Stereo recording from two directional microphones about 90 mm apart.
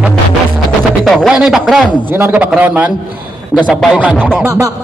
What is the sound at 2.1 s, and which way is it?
A man's voice, 20° right (ahead or behind).